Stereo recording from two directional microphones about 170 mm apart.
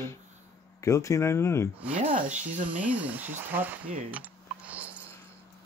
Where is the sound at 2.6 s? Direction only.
10° right (ahead or behind).